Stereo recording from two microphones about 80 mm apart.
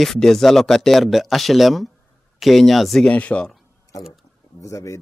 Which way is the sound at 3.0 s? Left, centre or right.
Centre.